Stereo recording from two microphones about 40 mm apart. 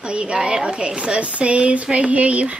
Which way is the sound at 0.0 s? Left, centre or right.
Right.